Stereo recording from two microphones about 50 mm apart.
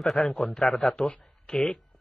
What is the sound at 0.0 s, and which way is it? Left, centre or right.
A man's voice, centre.